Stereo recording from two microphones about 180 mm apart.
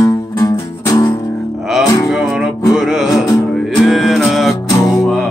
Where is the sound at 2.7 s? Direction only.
Centre (ahead or behind).